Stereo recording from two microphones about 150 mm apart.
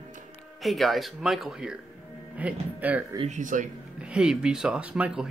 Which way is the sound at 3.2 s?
55° right (ahead or behind).